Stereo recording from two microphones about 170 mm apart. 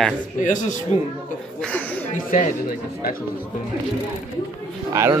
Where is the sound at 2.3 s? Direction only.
55° left (ahead or behind).